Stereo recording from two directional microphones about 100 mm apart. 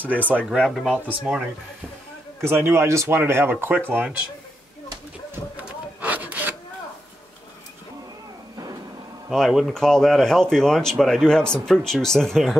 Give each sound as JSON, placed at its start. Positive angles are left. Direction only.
{"t": 0.5, "sound": "speech", "side_deg": 5}
{"t": 0.9, "sound": "speech", "side_deg": -10}
{"t": 2.4, "sound": "speech", "side_deg": -25}
{"t": 5.6, "sound": "rub", "side_deg": -15}
{"t": 9.3, "sound": "speech", "side_deg": 0}